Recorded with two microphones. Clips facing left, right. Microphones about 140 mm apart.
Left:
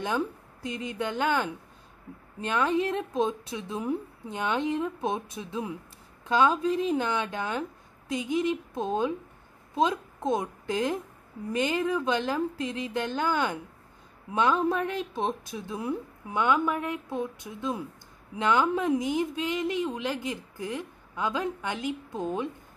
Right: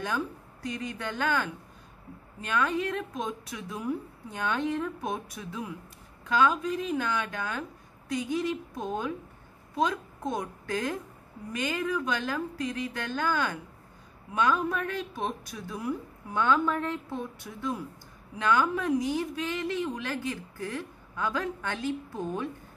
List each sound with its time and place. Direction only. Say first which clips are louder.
0.0 s a woman's voice: left 3 dB; 20° left (ahead or behind)